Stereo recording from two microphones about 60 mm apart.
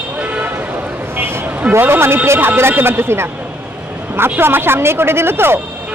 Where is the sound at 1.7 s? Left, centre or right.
Right.